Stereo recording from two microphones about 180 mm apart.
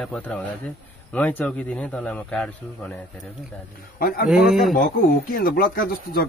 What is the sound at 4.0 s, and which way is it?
Speech, 55° left (ahead or behind).